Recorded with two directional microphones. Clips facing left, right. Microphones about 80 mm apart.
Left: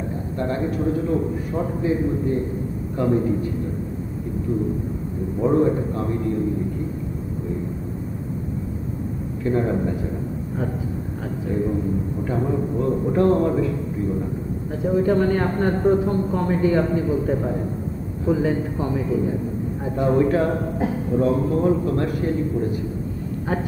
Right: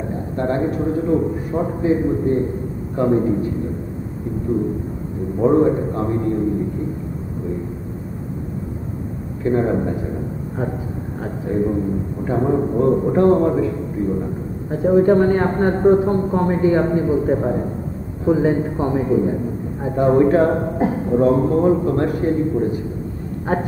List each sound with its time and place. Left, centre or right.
0.4 s a man's voice: right
5.4 s a man's voice: right
9.4 s a man's voice: right